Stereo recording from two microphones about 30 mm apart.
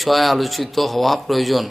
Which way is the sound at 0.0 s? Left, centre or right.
Centre.